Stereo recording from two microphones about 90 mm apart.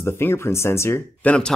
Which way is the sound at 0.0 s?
30° left (ahead or behind).